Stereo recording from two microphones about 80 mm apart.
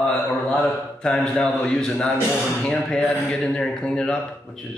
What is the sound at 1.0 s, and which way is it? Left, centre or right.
Speech, centre.